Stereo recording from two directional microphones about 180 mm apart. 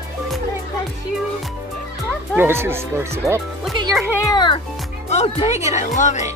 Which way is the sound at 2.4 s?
15° right (ahead or behind).